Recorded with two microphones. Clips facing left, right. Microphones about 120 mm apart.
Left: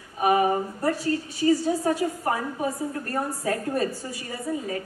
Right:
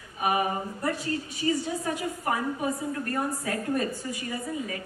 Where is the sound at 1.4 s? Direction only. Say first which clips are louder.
Left 7 dB; 35° left (ahead or behind).